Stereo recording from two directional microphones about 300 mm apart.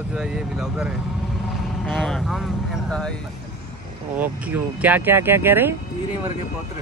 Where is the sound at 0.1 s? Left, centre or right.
Centre.